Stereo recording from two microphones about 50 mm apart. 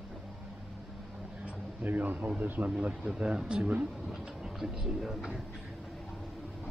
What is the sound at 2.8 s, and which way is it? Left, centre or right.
Speech, right.